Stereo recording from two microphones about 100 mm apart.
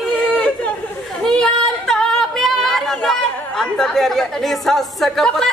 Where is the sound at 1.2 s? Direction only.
5° left (ahead or behind).